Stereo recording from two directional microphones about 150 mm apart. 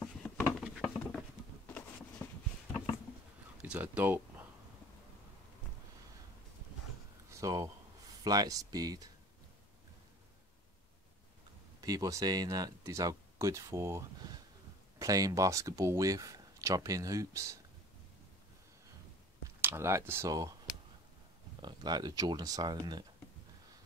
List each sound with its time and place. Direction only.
0.6 s patter: centre (ahead or behind)
1.7 s a sound: 10° left (ahead or behind)
3.6 s speech: 10° right (ahead or behind)
7.2 s speech: 20° right (ahead or behind)
11.8 s speech: 25° right (ahead or behind)
19.6 s speech: 15° right (ahead or behind)
21.5 s speech: 30° right (ahead or behind)